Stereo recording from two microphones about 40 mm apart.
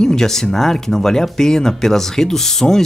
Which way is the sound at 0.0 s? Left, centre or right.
Centre.